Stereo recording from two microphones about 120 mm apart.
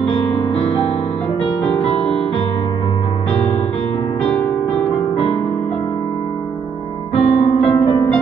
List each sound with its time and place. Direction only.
7.2 s music: 60° left (ahead or behind)